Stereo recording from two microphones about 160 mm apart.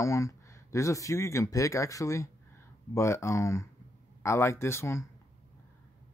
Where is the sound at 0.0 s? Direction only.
20° left (ahead or behind).